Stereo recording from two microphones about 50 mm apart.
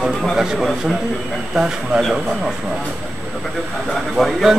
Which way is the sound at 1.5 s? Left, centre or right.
Centre.